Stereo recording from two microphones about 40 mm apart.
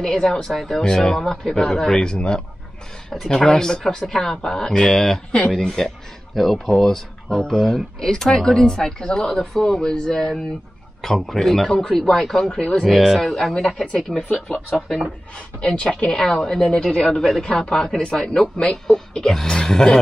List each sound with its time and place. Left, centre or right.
0.0 s a woman's voice: centre
3.4 s speech: centre
6.8 s speech: centre
12.4 s a woman's voice: centre
12.8 s speech: centre
15.3 s a woman's voice: left
16.1 s a woman's voice: centre